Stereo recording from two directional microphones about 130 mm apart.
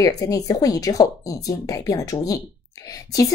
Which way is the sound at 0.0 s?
25° left (ahead or behind).